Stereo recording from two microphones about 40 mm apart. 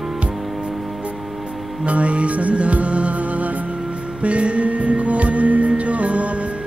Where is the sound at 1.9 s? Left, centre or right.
Right.